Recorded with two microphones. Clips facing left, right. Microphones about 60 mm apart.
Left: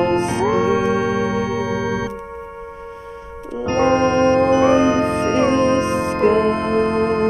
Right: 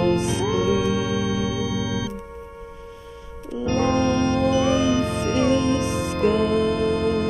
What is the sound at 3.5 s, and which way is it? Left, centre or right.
Music, left.